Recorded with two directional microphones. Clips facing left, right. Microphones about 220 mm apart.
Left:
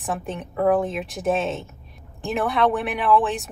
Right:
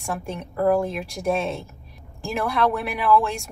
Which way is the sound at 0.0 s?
Centre (ahead or behind).